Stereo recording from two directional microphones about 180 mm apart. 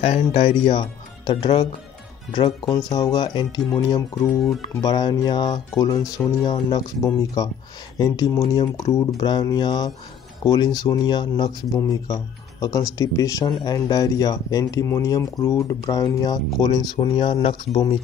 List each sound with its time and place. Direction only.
0.0 s speech: 35° left (ahead or behind)
2.9 s speech: 20° left (ahead or behind)